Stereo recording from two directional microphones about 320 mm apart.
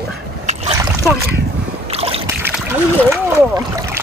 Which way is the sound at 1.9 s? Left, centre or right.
Centre.